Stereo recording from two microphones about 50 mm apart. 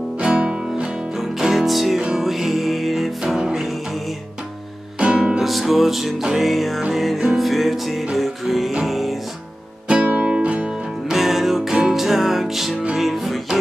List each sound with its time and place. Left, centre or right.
0.2 s music: centre
1.4 s music: centre
2.0 s music: centre
2.2 s music: centre
3.3 s music: centre
5.0 s music: centre
5.4 s music: centre
9.8 s music: right
11.1 s music: centre